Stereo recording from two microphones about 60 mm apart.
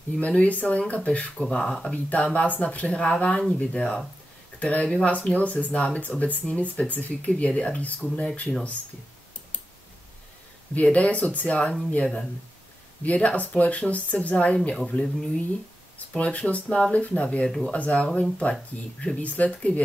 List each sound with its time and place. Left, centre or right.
0.2 s speech: left
2.0 s speech: left
10.7 s speech: left
12.0 s speech: centre